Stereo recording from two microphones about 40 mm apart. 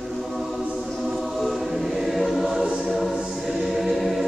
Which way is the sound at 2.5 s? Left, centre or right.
Centre.